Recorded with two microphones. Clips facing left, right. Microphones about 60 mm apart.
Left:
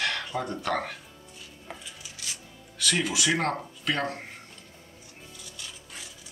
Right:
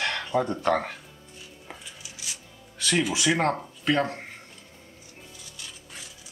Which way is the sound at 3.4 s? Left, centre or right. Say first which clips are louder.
Right 3 dB; right.